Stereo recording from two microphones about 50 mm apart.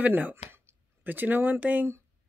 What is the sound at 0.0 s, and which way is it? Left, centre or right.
Speech, right.